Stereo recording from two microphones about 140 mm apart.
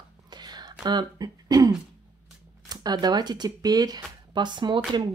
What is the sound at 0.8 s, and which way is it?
Speech, 30° right (ahead or behind).